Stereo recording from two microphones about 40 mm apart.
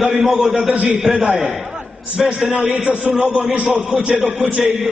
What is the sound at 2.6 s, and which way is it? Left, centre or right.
Speech, right.